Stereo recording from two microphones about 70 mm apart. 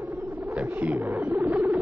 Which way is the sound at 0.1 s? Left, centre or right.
Right.